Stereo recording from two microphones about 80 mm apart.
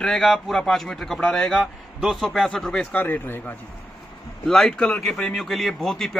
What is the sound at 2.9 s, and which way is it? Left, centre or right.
Speech, left.